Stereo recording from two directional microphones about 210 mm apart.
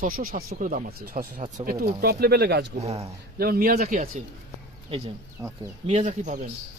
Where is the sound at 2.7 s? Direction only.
30° right (ahead or behind).